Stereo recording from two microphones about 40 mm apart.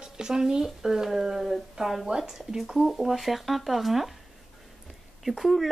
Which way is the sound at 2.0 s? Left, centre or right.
Centre.